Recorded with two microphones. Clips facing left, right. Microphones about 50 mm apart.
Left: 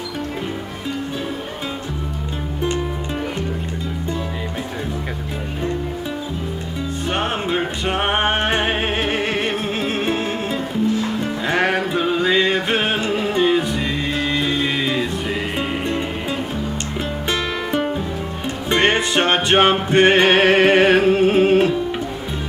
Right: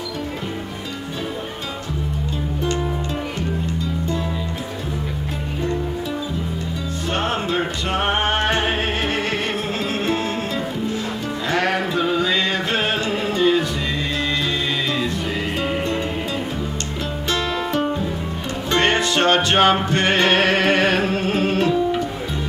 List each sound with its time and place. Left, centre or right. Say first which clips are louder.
7.2 s music: even; left
11.4 s music: left 1 dB; left
18.7 s music: left 1 dB; left